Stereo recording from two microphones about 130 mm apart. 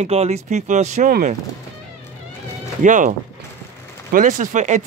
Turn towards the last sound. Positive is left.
turn(degrees=-70)  # may be behind; listen again after turning